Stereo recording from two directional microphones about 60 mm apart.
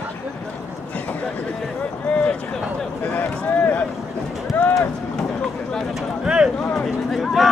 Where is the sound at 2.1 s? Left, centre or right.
Left.